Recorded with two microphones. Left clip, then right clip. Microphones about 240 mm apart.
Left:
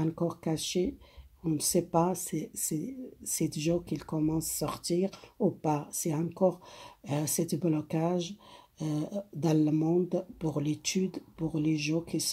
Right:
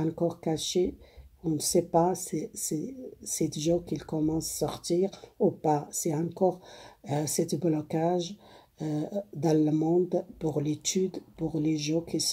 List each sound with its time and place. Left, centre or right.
0.3 s speech: left